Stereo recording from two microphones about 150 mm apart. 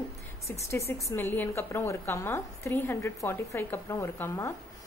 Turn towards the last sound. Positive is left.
turn(degrees=20)  # may be behind; listen again after turning